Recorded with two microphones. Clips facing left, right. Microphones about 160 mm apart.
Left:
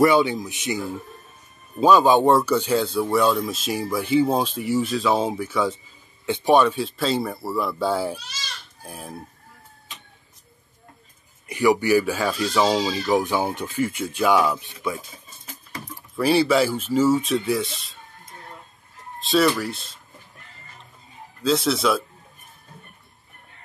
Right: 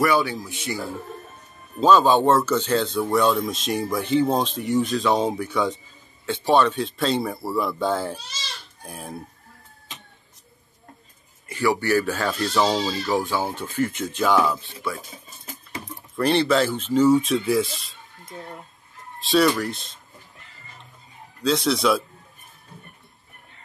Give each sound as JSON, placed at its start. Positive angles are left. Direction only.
{"t": 0.0, "sound": "speech", "side_deg": 20}
{"t": 6.2, "sound": "speech", "side_deg": 15}
{"t": 11.4, "sound": "speech", "side_deg": 15}
{"t": 16.2, "sound": "speech", "side_deg": 5}
{"t": 19.1, "sound": "speech", "side_deg": 0}
{"t": 21.4, "sound": "speech", "side_deg": 0}